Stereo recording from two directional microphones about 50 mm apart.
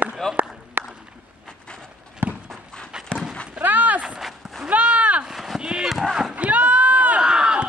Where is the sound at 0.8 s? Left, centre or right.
Right.